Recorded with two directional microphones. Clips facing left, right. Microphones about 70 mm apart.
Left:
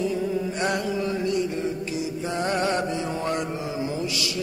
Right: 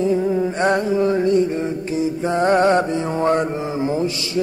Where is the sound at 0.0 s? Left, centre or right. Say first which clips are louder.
Right 7 dB; right.